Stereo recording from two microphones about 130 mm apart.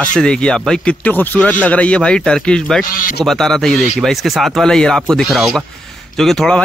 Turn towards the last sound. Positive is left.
turn(degrees=5)  # may be behind; listen again after turning